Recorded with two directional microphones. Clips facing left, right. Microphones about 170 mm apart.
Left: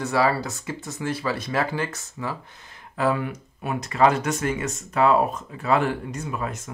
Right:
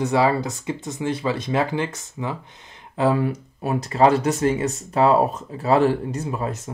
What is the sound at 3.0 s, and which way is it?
Speech, 30° right (ahead or behind).